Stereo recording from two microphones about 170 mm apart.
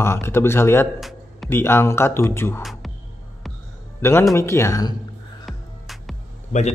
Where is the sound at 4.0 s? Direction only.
15° left (ahead or behind).